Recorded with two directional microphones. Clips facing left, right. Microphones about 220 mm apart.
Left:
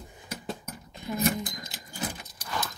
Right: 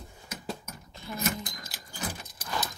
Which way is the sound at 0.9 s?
15° left (ahead or behind).